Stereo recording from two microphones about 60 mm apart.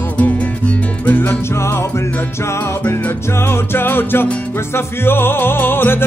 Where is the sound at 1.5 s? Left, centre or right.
Left.